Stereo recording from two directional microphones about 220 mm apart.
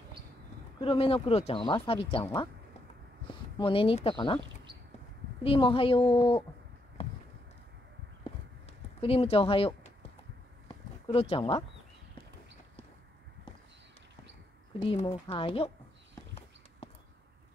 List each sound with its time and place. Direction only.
0.7 s speech: 25° left (ahead or behind)
3.5 s speech: 25° left (ahead or behind)
5.4 s speech: 25° left (ahead or behind)
9.0 s speech: 25° left (ahead or behind)
11.1 s speech: 25° left (ahead or behind)
14.8 s speech: 25° left (ahead or behind)
16.8 s a sound: 25° left (ahead or behind)